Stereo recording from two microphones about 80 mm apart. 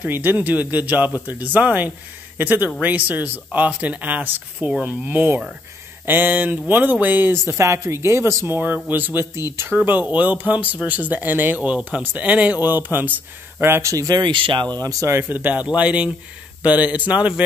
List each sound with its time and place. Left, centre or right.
0.0 s speech: right
8.5 s speech: right
14.0 s speech: right
14.8 s speech: right
15.3 s speech: right